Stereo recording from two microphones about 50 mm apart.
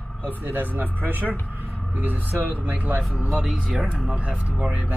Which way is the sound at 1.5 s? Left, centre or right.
Right.